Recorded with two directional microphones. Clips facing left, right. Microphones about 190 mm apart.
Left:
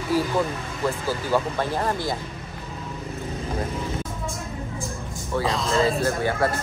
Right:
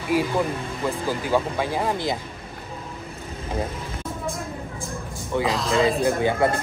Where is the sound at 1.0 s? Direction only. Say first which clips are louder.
Right 2 dB; 15° right (ahead or behind).